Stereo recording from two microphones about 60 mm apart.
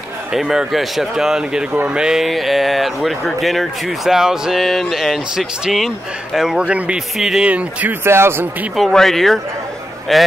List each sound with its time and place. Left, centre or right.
0.3 s speech: centre
2.2 s speech: centre
6.6 s speech: right
7.2 s speech: centre
7.4 s speech: right
8.0 s speech: right
8.7 s speech: centre